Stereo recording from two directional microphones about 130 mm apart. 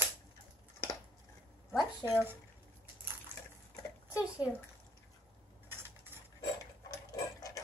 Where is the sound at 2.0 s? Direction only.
15° right (ahead or behind).